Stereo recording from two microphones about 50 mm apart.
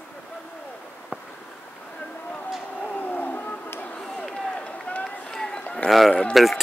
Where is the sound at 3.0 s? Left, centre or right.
Left.